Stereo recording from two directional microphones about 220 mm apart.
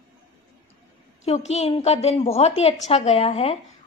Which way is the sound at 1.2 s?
30° left (ahead or behind).